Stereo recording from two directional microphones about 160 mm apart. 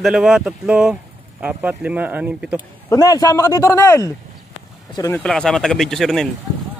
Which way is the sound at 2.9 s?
20° left (ahead or behind).